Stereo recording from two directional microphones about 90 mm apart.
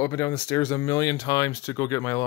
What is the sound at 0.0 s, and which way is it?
Speech, 35° left (ahead or behind).